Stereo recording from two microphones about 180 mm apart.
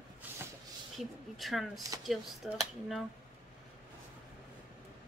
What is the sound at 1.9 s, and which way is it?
Speech, 20° right (ahead or behind).